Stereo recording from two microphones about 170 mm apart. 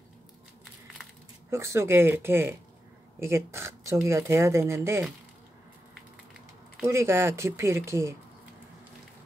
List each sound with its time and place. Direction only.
1.5 s speech: 15° right (ahead or behind)
6.8 s speech: 15° right (ahead or behind)